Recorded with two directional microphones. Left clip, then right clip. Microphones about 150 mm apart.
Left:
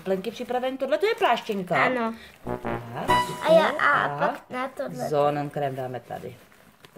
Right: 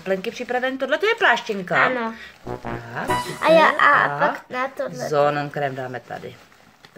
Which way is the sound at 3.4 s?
25° right (ahead or behind).